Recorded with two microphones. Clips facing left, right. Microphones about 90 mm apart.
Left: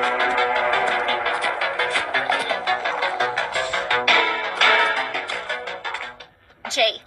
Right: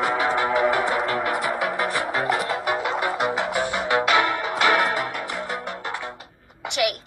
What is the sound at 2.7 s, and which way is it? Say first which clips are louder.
Music: left 2 dB; 15° right (ahead or behind).